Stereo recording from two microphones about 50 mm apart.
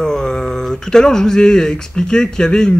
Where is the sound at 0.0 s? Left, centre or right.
Centre.